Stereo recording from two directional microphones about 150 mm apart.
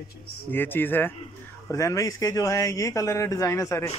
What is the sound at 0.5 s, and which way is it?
Speech, 15° left (ahead or behind).